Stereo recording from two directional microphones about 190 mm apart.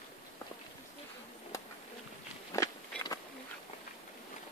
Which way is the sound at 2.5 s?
20° left (ahead or behind).